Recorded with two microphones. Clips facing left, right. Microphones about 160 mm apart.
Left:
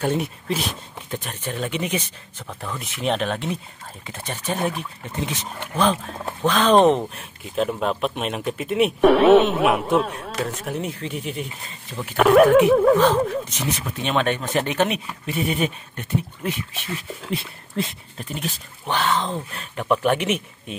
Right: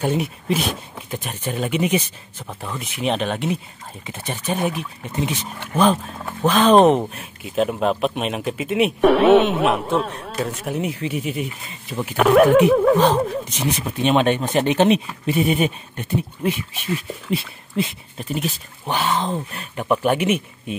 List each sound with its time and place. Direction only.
0.0 s speech: 10° right (ahead or behind)
6.4 s speech: 5° right (ahead or behind)
12.9 s speech: 15° right (ahead or behind)
17.3 s speech: 5° right (ahead or behind)